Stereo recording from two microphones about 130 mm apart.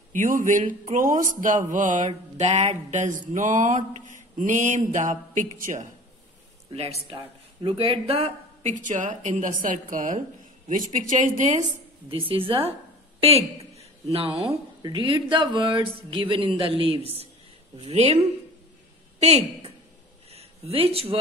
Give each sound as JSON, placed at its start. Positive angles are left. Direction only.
{"t": 0.1, "sound": "a man's voice", "side_deg": -90}
{"t": 2.0, "sound": "mantra", "side_deg": -60}
{"t": 6.7, "sound": "speech", "side_deg": -50}
{"t": 8.7, "sound": "mantra", "side_deg": -75}
{"t": 10.7, "sound": "a man's voice", "side_deg": -85}
{"t": 12.1, "sound": "a woman's voice", "side_deg": -45}
{"t": 14.5, "sound": "a woman's voice", "side_deg": -35}
{"t": 20.2, "sound": "a sound", "side_deg": -50}